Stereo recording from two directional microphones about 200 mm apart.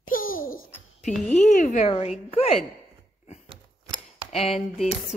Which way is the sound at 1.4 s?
40° left (ahead or behind).